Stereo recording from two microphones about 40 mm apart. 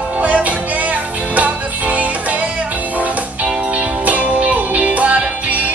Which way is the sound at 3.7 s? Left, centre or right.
Right.